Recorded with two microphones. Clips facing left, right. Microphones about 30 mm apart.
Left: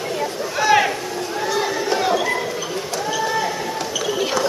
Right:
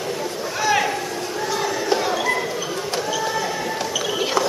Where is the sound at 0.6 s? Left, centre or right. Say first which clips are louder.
Left 4 dB; centre.